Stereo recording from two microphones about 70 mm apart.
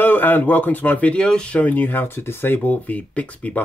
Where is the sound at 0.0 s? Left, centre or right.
Left.